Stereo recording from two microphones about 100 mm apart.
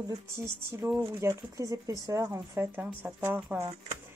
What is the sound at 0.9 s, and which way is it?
A woman's voice, 30° right (ahead or behind).